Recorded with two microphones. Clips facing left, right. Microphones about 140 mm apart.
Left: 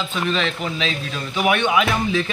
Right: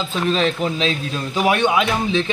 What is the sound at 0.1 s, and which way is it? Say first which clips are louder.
A man's voice: right 6 dB; 35° right (ahead or behind).